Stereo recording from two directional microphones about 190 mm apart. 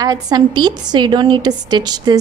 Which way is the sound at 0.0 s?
20° right (ahead or behind).